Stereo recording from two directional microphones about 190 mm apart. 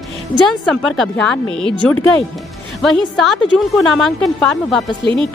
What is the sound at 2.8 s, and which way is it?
A woman's voice, centre (ahead or behind).